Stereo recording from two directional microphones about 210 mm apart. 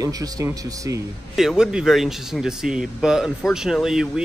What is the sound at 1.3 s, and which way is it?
Speech, centre (ahead or behind).